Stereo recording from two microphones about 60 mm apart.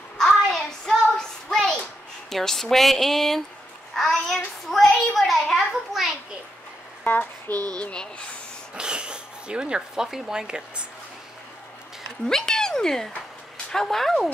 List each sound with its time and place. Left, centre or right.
0.2 s a sound: centre
2.2 s a child's voice: centre
7.1 s speech: left
7.8 s speech: centre
8.7 s speech: centre
12.3 s a child's voice: centre